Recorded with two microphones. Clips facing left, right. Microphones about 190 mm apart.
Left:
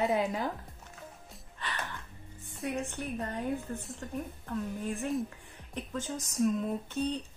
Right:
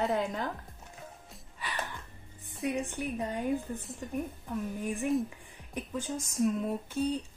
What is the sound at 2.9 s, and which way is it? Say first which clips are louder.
Speech: right 2 dB; 10° right (ahead or behind).